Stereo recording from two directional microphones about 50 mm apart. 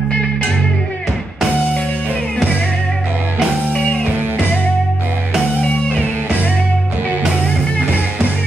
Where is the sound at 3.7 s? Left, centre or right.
Left.